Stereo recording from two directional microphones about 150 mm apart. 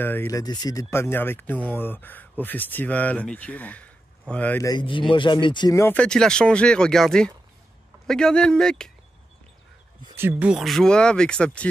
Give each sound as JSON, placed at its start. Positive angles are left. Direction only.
{"t": 0.0, "sound": "speech", "side_deg": 15}
{"t": 0.4, "sound": "speech", "side_deg": 25}
{"t": 4.6, "sound": "speech", "side_deg": 30}
{"t": 5.9, "sound": "speech", "side_deg": 5}
{"t": 10.1, "sound": "speech", "side_deg": -10}